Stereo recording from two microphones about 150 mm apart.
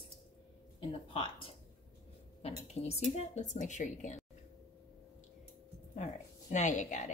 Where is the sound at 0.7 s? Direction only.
35° left (ahead or behind).